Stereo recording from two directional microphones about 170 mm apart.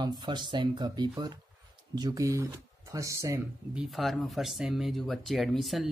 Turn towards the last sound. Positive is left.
turn(degrees=0)  # may be behind; listen again after turning